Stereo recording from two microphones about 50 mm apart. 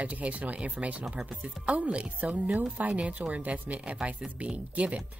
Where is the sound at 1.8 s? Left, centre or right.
Right.